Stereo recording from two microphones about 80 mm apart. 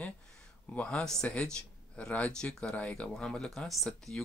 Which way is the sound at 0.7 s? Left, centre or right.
Centre.